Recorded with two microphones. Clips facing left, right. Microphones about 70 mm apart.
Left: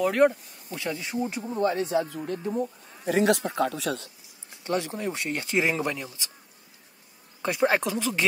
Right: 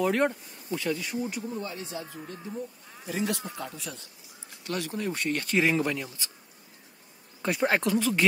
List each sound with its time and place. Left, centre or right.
0.0 s speech: centre
0.7 s speech: centre
1.6 s speech: left
4.6 s speech: left; by 6.3 s centre
7.4 s speech: centre